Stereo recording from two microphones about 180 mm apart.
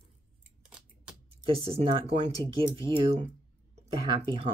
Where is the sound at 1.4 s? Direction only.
30° right (ahead or behind).